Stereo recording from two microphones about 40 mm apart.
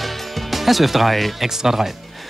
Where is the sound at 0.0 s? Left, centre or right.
Centre.